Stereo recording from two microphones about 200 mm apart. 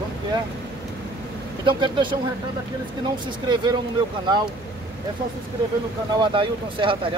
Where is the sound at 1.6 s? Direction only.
25° right (ahead or behind).